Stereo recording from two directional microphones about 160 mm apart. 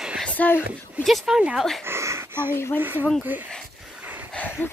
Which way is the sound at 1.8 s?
15° right (ahead or behind).